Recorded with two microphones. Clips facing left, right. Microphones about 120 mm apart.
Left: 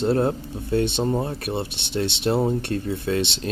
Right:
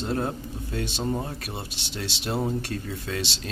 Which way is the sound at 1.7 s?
60° left (ahead or behind).